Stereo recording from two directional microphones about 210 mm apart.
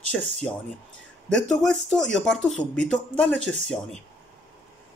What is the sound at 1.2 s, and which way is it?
Speech, 5° left (ahead or behind).